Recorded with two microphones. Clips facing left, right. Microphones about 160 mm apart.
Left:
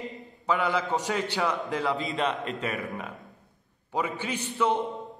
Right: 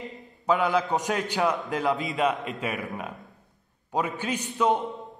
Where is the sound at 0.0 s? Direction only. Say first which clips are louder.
Left 1 dB; centre (ahead or behind).